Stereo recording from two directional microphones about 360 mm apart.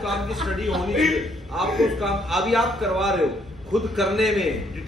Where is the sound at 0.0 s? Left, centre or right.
Centre.